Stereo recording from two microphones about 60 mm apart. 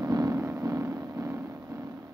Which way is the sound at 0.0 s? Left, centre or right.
Right.